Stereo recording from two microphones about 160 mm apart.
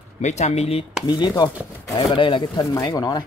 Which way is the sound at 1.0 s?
25° left (ahead or behind).